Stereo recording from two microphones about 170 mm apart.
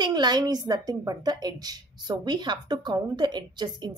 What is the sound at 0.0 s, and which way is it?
Speech, 25° right (ahead or behind).